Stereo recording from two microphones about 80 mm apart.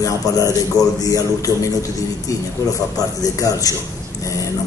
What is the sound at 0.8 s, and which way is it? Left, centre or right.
Speech, left.